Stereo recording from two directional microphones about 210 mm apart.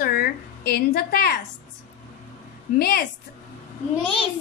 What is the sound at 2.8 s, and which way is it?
Speech, 50° left (ahead or behind).